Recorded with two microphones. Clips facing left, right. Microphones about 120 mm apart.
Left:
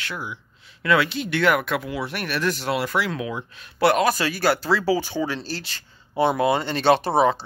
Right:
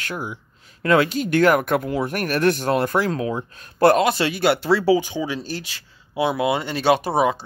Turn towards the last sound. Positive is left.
turn(degrees=-10)  # may be behind; listen again after turning